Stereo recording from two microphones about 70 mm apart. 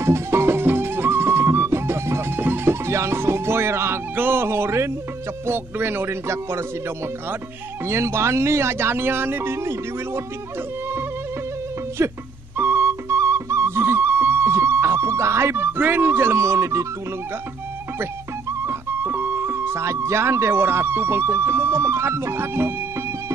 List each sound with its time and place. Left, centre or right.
0.0 s music: right
5.5 s speech: right
7.8 s speech: right
12.0 s speech: right
12.5 s music: right
18.7 s speech: right